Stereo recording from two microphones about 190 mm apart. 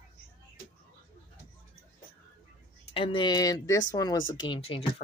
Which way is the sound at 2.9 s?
25° left (ahead or behind).